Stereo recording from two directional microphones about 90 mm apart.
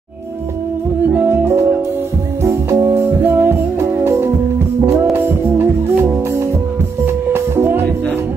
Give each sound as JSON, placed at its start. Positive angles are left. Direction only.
{"t": 1.1, "sound": "music", "side_deg": -20}
{"t": 7.3, "sound": "music", "side_deg": -30}